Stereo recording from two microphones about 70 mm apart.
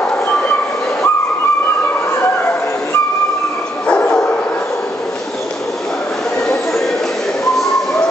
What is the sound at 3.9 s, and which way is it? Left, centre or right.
Dog, centre.